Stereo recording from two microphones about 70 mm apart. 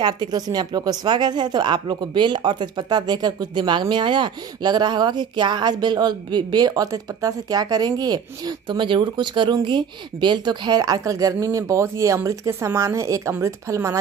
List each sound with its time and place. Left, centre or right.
0.0 s a woman's voice: right